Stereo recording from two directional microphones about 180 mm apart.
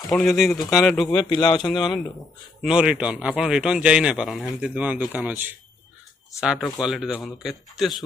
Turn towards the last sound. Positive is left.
turn(degrees=0)  # may be behind; listen again after turning